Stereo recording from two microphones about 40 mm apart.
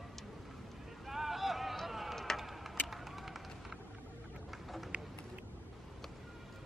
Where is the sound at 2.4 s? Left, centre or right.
Centre.